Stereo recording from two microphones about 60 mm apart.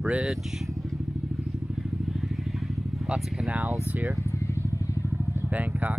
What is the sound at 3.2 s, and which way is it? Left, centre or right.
Speech, centre.